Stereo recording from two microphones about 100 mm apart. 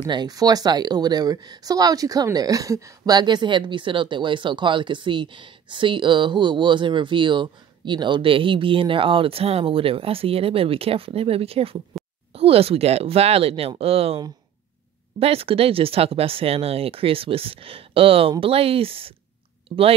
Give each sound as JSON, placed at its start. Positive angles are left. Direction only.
{"t": 0.0, "sound": "speech", "side_deg": -50}
{"t": 3.2, "sound": "speech", "side_deg": -50}